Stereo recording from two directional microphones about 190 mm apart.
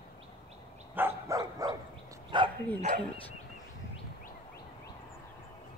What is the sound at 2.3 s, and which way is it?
Bow-wow, 25° right (ahead or behind).